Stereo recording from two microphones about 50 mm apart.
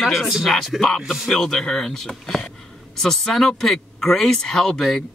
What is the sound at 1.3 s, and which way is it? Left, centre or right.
Speech, centre.